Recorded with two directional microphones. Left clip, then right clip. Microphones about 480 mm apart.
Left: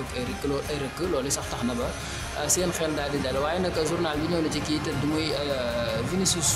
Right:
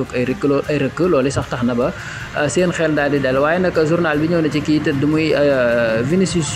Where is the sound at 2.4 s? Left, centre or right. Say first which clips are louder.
Right 10 dB; left.